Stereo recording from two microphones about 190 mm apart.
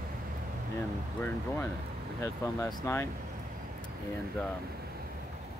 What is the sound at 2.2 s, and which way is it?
Speech, 15° left (ahead or behind).